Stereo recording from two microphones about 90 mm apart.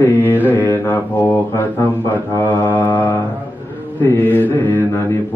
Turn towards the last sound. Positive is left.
turn(degrees=20)  # may be behind; listen again after turning